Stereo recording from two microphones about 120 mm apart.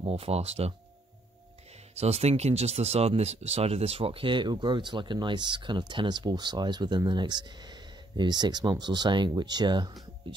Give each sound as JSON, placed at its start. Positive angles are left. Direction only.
{"t": 0.0, "sound": "speech", "side_deg": -55}
{"t": 2.0, "sound": "speech", "side_deg": -60}